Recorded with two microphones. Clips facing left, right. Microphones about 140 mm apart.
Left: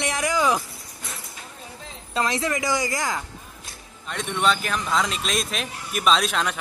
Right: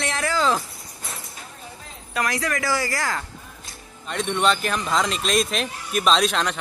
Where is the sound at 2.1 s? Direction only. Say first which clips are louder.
Left 1 dB; 25° left (ahead or behind).